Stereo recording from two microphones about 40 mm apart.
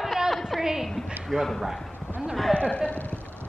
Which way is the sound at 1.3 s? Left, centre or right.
Centre.